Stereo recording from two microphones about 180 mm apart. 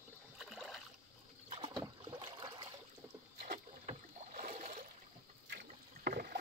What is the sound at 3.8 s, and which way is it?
Rowboat, 45° right (ahead or behind).